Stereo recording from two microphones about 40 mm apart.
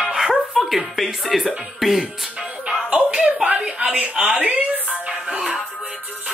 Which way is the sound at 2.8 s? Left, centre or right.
Right.